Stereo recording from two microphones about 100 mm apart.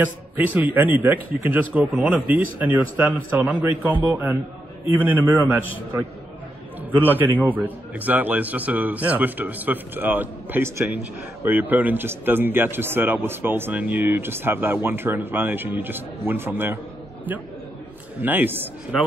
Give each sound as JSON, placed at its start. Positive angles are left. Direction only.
{"t": 0.0, "sound": "a man's voice", "side_deg": -15}
{"t": 6.9, "sound": "a man's voice", "side_deg": -20}
{"t": 18.2, "sound": "a man's voice", "side_deg": -20}